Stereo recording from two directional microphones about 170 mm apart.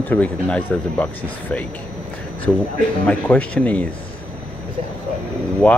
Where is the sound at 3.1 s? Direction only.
10° left (ahead or behind).